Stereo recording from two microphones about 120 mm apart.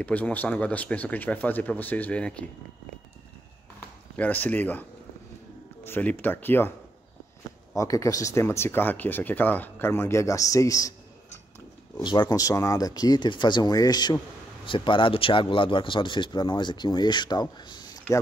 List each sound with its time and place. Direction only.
0.0 s speech: 15° left (ahead or behind)
4.2 s speech: 15° left (ahead or behind)
5.9 s speech: 15° left (ahead or behind)
7.7 s speech: 25° left (ahead or behind)
12.0 s speech: 40° left (ahead or behind)